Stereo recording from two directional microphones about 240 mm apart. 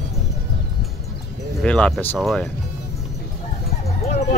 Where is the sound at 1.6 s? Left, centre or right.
Centre.